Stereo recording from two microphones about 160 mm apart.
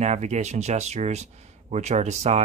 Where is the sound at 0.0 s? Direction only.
45° right (ahead or behind).